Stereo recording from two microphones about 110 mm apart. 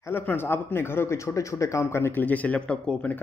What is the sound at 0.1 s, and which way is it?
Speech, 20° left (ahead or behind).